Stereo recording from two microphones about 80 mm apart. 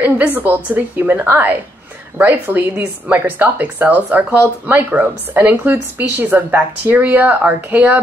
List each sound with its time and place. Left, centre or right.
0.0 s speech: right